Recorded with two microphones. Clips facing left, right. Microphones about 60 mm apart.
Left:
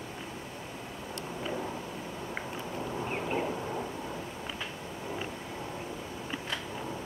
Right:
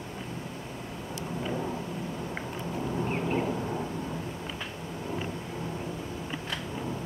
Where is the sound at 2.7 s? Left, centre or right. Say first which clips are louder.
Right 4 dB; centre.